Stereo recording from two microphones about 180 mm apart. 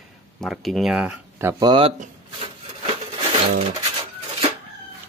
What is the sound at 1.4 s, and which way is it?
Speech, 25° right (ahead or behind).